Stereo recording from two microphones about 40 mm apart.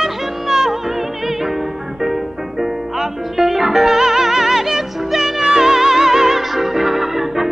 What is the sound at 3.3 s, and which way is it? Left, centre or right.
Music, centre.